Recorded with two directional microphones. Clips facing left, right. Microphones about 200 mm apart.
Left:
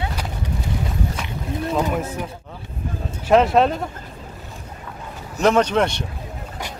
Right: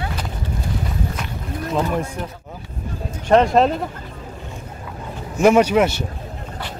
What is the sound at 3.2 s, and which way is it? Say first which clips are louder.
Speech: right 1 dB; centre (ahead or behind).